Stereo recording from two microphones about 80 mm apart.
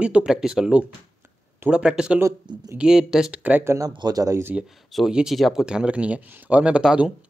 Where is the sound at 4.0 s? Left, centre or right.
Right.